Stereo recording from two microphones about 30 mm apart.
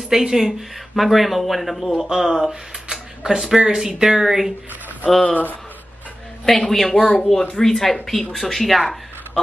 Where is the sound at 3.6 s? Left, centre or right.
Right.